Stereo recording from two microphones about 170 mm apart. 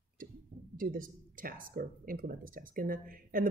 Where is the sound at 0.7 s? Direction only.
55° right (ahead or behind).